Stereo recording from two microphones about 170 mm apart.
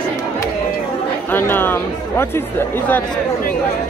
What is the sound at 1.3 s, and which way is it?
Music, 10° left (ahead or behind).